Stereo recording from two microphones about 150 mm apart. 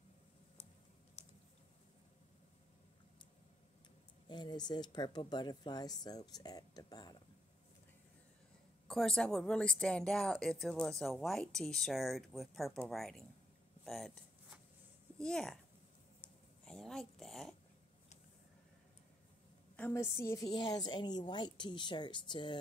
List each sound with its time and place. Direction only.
4.3 s speech: 30° left (ahead or behind)
8.8 s speech: 5° left (ahead or behind)
13.8 s a sound: centre (ahead or behind)
15.1 s speech: 5° left (ahead or behind)
16.2 s a sound: 5° left (ahead or behind)
19.8 s a woman's voice: 20° left (ahead or behind)
20.5 s a woman's voice: 30° left (ahead or behind)